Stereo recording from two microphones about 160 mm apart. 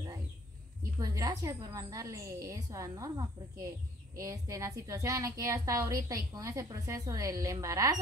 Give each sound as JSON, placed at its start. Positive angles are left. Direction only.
{"t": 0.9, "sound": "a woman's voice", "side_deg": -25}